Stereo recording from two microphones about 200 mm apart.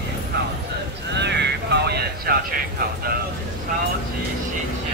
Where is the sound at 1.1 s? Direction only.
60° right (ahead or behind).